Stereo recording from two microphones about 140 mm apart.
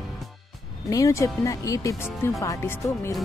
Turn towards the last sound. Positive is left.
turn(degrees=20)  # may be behind; listen again after turning